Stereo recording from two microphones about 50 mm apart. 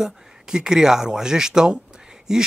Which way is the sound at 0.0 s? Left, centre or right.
Centre.